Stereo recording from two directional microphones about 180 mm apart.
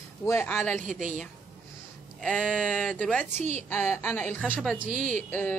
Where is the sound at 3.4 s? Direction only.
40° right (ahead or behind).